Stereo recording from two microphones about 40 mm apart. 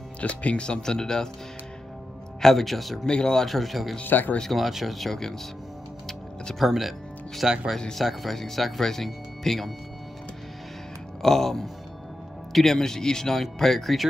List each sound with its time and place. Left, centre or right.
0.2 s speech: left
0.7 s speech: centre
2.4 s speech: centre
3.1 s speech: left
3.4 s speech: centre
4.0 s speech: left
4.5 s speech: centre
6.6 s speech: centre
11.2 s speech: centre